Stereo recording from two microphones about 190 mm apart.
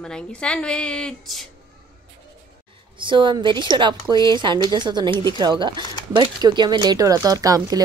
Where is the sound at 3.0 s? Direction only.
25° right (ahead or behind).